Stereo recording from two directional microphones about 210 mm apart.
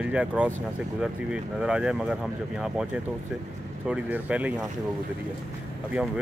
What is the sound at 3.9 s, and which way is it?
Speech, 5° right (ahead or behind).